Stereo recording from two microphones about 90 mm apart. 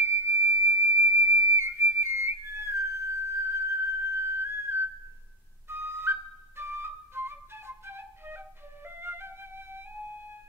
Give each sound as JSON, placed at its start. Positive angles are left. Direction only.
{"t": 0.1, "sound": "whistle", "side_deg": -30}
{"t": 5.7, "sound": "flute", "side_deg": -25}